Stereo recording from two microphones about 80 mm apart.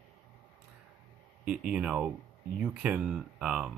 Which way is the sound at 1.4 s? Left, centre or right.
Centre.